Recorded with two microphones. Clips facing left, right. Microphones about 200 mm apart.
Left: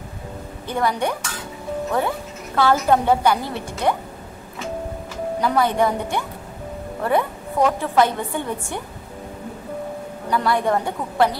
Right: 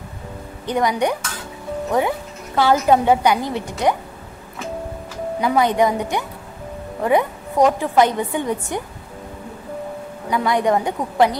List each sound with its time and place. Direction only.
0.7 s a woman's voice: 15° right (ahead or behind)
5.4 s a woman's voice: 15° right (ahead or behind)
10.3 s a woman's voice: 15° right (ahead or behind)